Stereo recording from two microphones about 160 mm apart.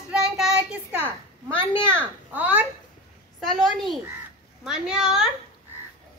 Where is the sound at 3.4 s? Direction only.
Centre (ahead or behind).